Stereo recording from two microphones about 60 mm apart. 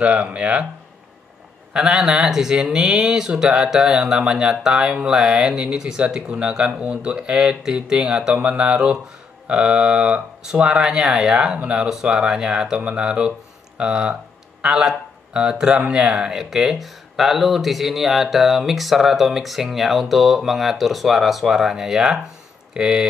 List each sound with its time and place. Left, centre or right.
0.0 s speech: right
1.7 s speech: centre